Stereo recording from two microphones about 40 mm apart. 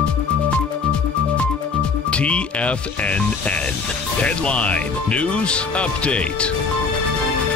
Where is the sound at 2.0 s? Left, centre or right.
Left.